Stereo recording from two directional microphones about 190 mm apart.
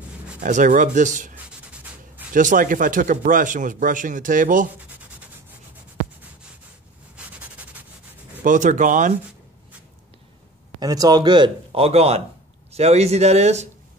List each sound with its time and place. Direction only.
0.4 s speech: 40° right (ahead or behind)
1.3 s writing: 10° right (ahead or behind)
2.3 s a man's voice: 45° right (ahead or behind)
8.5 s speech: 40° right (ahead or behind)
10.8 s a man's voice: 20° right (ahead or behind); by 13.7 s 35° right (ahead or behind)